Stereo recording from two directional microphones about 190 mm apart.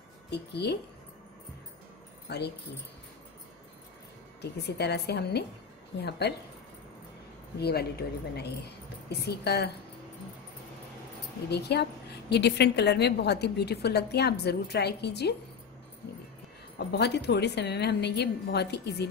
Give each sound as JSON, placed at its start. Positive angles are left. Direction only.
{"t": 0.3, "sound": "a woman's voice", "side_deg": 60}
{"t": 2.2, "sound": "speech", "side_deg": 60}
{"t": 4.4, "sound": "a woman's voice", "side_deg": 60}
{"t": 7.6, "sound": "a woman's voice", "side_deg": 55}
{"t": 11.7, "sound": "a woman's voice", "side_deg": 60}
{"t": 16.7, "sound": "a woman's voice", "side_deg": 65}